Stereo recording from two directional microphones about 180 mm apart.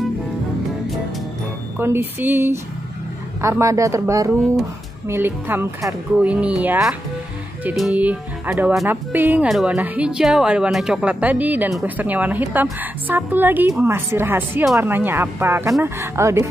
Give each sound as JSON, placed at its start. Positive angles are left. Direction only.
{"t": 1.8, "sound": "speech", "side_deg": -15}